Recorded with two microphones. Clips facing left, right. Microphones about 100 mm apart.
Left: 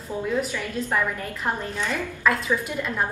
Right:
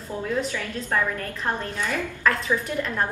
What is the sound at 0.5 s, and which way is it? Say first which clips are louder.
A woman's voice: left 1 dB; 10° left (ahead or behind).